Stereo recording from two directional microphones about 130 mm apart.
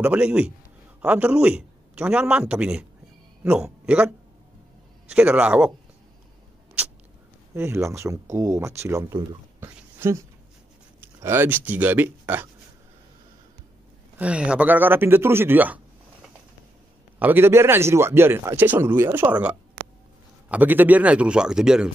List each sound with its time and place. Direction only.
0.0 s speech: 10° right (ahead or behind)
5.1 s speech: 10° right (ahead or behind)
7.5 s speech: 20° right (ahead or behind)
9.6 s a sound: 20° right (ahead or behind)
11.0 s speech: 20° right (ahead or behind)
14.1 s speech: 10° right (ahead or behind)
17.2 s speech: 15° right (ahead or behind)